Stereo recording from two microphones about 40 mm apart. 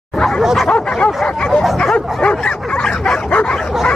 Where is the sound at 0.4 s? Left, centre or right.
Centre.